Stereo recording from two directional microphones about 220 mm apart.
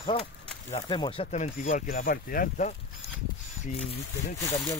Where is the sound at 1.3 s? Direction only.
35° left (ahead or behind).